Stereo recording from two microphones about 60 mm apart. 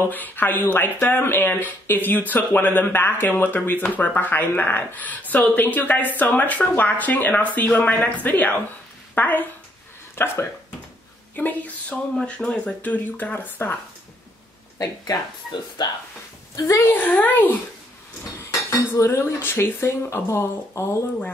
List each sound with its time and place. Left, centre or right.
0.1 s speech: left
5.3 s a woman's voice: left
10.1 s speech: left
11.3 s speech: left
16.5 s speech: left
16.9 s speech: left
18.5 s cutlery: left
19.0 s speech: left